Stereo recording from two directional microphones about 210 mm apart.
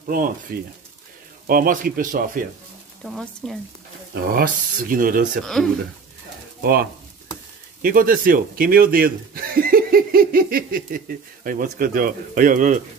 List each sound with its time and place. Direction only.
0.0 s a man's voice: 40° right (ahead or behind)
3.0 s a woman's voice: centre (ahead or behind)
4.1 s speech: 45° right (ahead or behind)
5.4 s a woman's voice: centre (ahead or behind)
6.6 s a man's voice: 45° right (ahead or behind)